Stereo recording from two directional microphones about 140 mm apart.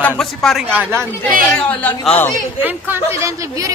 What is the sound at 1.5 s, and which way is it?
Music, 10° left (ahead or behind).